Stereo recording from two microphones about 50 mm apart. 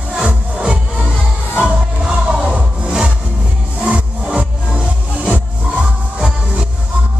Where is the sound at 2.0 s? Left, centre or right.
Centre.